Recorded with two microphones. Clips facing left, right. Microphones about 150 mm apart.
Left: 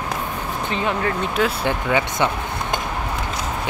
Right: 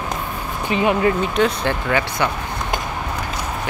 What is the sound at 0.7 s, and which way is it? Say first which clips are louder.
Speech: right 6 dB; 10° right (ahead or behind).